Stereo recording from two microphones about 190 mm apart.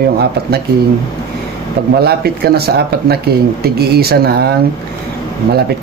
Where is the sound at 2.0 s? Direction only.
55° right (ahead or behind).